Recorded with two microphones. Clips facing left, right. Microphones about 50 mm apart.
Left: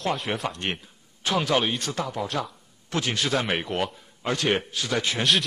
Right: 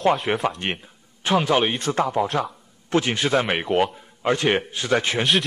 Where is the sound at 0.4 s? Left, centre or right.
Centre.